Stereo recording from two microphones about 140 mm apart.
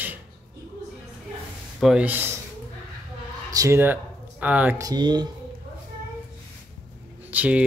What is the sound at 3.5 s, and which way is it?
Speech, 20° right (ahead or behind).